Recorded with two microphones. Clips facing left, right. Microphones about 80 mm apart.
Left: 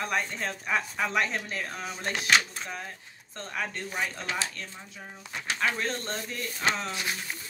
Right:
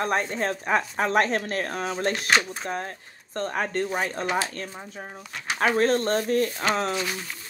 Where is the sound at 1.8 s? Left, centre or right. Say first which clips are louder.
Right 7 dB; right.